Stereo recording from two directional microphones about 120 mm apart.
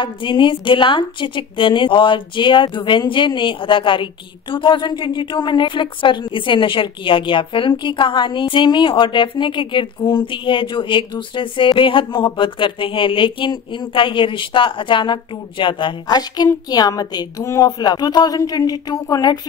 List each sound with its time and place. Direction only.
0.0 s a woman's voice: 40° left (ahead or behind)